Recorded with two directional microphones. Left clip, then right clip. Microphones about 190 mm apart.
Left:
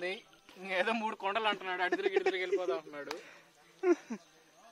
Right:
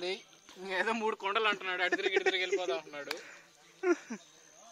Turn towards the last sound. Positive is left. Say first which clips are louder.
# left 1 dB
turn(degrees=10)  # may be behind; listen again after turning